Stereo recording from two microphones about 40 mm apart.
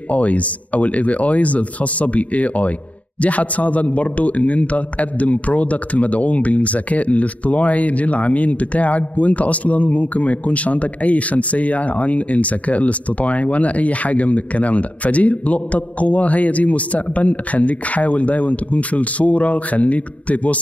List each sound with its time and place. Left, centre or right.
0.1 s speech: left